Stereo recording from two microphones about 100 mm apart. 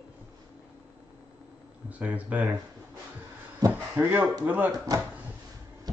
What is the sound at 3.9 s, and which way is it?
Speech, 15° right (ahead or behind).